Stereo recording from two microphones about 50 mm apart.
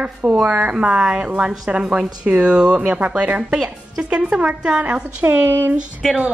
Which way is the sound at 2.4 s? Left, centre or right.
Centre.